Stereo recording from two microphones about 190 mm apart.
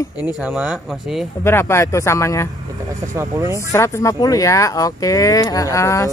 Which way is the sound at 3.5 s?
15° left (ahead or behind).